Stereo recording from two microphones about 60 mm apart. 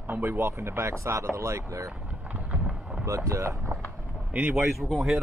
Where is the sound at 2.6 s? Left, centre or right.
Centre.